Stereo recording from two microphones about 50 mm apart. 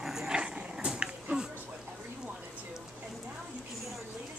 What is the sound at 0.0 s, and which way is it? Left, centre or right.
Dog, centre.